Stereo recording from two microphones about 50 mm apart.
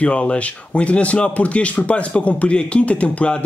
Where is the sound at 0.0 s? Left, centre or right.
Left.